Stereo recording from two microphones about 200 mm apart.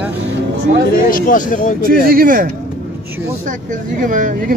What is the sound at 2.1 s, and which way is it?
Speech, 45° right (ahead or behind).